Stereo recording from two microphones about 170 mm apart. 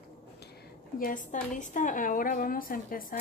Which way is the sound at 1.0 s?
50° left (ahead or behind).